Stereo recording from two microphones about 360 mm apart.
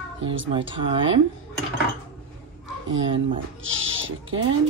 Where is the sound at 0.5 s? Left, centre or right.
Centre.